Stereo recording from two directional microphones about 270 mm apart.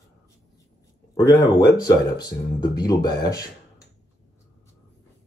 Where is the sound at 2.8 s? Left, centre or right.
Centre.